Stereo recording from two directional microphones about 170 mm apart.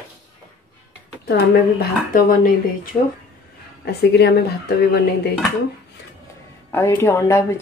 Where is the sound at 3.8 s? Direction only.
75° left (ahead or behind).